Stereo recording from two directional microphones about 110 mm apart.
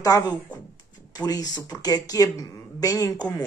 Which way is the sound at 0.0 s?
35° left (ahead or behind).